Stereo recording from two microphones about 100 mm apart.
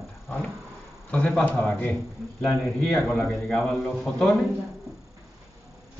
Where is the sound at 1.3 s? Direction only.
5° left (ahead or behind).